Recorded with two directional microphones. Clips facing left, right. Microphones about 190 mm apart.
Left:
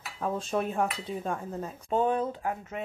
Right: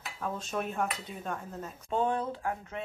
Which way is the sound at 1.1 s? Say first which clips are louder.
Left 8 dB; 45° left (ahead or behind).